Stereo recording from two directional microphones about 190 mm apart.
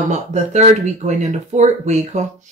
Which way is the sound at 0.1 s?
35° right (ahead or behind).